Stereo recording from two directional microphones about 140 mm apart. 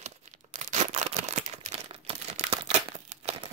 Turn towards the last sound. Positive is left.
turn(degrees=-50)  # may be behind; listen again after turning